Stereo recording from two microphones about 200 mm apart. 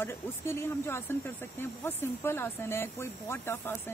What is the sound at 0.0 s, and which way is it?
Speech, 10° left (ahead or behind).